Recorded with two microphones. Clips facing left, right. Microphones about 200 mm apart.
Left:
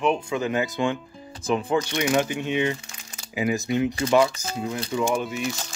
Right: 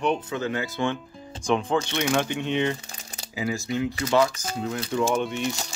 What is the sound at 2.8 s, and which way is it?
Typing, 35° right (ahead or behind).